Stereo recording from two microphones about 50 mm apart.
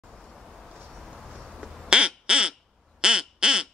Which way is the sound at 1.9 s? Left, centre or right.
Centre.